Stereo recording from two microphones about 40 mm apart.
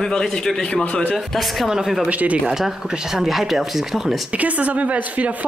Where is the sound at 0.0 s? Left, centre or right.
Centre.